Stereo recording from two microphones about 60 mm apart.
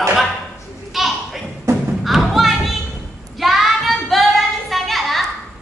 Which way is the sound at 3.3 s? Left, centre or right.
Centre.